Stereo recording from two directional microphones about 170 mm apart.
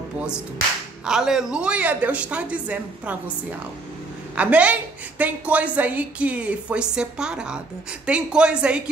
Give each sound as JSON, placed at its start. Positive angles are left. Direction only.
{"t": 1.0, "sound": "a woman's voice", "side_deg": -5}